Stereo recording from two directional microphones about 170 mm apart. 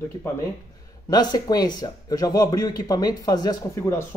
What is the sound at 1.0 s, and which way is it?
Speech, 25° left (ahead or behind).